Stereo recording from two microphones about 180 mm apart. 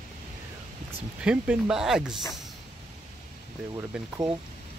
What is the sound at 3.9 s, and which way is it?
Speech, 5° right (ahead or behind).